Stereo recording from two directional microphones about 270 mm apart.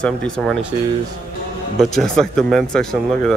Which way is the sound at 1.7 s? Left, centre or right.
Centre.